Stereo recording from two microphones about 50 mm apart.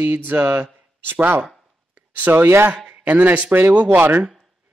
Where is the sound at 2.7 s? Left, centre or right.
Right.